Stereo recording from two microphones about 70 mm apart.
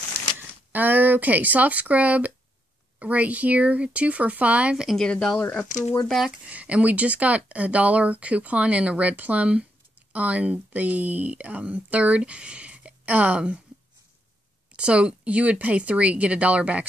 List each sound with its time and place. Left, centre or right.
0.7 s speech: right
4.7 s speech: centre
5.0 s speech: centre
6.4 s speech: centre
14.7 s speech: centre